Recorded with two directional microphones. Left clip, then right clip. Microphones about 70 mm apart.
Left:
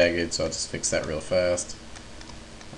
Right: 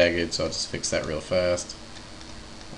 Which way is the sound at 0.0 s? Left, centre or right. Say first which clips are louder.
Even; centre.